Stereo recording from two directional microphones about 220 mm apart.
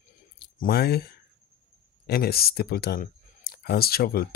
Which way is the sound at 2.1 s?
45° left (ahead or behind).